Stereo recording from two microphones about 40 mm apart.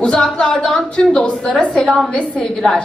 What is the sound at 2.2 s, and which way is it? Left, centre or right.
Speech, left.